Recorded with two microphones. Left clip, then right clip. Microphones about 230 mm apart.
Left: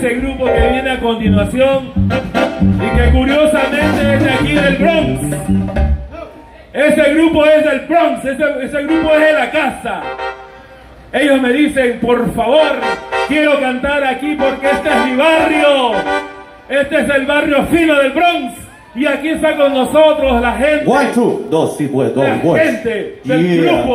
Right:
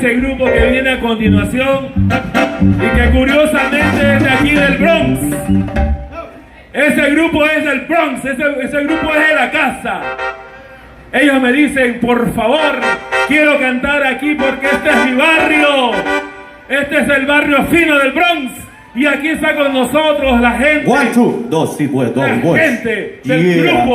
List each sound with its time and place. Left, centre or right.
0.0 s speech: right